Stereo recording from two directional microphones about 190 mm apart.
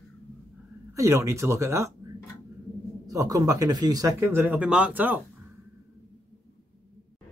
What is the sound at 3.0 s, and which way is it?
Speech, 20° right (ahead or behind).